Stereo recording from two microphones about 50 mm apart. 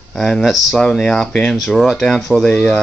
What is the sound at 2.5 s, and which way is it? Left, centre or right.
Speech, centre.